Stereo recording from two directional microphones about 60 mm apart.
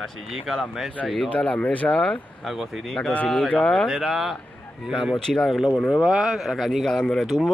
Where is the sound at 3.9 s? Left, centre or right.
Centre.